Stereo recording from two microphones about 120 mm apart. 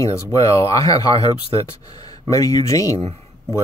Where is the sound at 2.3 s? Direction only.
30° left (ahead or behind).